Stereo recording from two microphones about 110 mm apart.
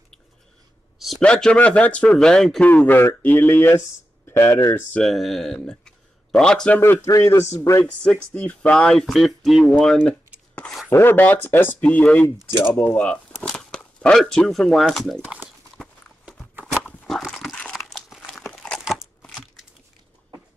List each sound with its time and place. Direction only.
0.9 s speech: centre (ahead or behind)
2.8 s speech: 20° left (ahead or behind)
4.9 s speech: centre (ahead or behind)
6.8 s speech: 25° left (ahead or behind)
7.8 s speech: 10° left (ahead or behind)
10.9 s speech: 20° left (ahead or behind); by 15.2 s 5° left (ahead or behind)
15.2 s clip-clop: 15° right (ahead or behind)
16.3 s a sound: 5° right (ahead or behind)
17.6 s crumpling: centre (ahead or behind)
19.2 s a sound: 5° left (ahead or behind)